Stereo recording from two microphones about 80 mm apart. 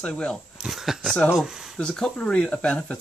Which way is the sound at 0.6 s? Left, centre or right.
Centre.